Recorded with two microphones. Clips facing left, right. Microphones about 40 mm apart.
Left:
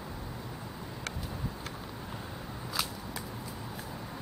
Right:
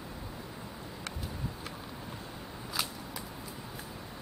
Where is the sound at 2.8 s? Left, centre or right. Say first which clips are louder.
Left 1 dB; centre.